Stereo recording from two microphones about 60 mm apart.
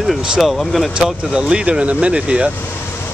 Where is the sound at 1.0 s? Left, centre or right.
Centre.